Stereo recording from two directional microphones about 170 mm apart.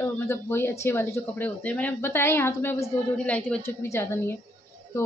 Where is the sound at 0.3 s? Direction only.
15° left (ahead or behind).